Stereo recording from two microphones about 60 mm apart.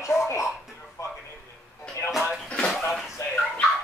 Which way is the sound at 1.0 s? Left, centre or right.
Left.